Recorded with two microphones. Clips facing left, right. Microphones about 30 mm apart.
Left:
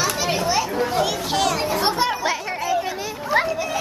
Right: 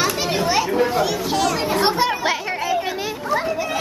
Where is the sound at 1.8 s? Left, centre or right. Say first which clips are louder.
Right 2 dB; centre.